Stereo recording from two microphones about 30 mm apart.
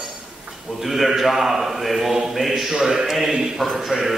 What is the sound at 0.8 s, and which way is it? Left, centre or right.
Speech, centre.